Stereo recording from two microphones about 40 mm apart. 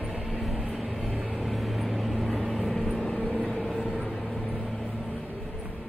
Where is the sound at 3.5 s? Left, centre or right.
Centre.